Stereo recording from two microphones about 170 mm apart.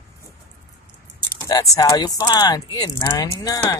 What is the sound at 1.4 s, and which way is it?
Speech, 20° left (ahead or behind).